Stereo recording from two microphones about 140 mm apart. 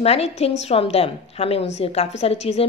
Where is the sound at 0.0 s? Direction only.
50° left (ahead or behind).